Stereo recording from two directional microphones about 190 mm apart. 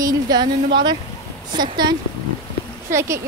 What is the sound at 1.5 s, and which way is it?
A woman's voice, 25° right (ahead or behind).